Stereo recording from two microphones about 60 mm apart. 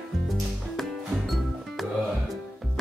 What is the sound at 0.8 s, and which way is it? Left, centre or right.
Music, centre.